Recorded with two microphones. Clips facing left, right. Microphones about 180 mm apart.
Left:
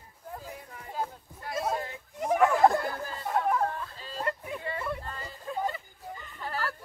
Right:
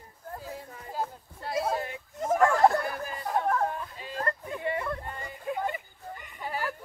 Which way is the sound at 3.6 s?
20° right (ahead or behind).